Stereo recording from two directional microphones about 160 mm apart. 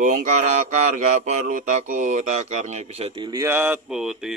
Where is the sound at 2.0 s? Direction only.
50° right (ahead or behind).